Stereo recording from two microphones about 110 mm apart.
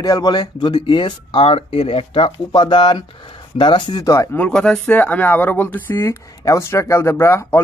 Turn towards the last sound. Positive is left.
turn(degrees=25)  # may be behind; listen again after turning